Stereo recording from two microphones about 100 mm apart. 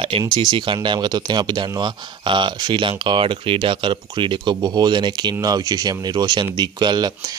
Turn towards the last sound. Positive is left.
turn(degrees=-45)  # may be behind; listen again after turning